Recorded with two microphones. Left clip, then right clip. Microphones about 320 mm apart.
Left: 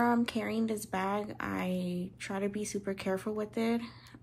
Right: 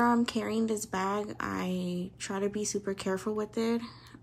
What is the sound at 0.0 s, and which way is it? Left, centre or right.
Speech, centre.